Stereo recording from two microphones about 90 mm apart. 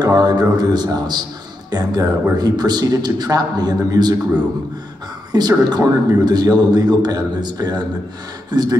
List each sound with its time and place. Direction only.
0.0 s a sound: 45° right (ahead or behind)
0.8 s a man's voice: 50° right (ahead or behind)
5.3 s a man's voice: 50° right (ahead or behind)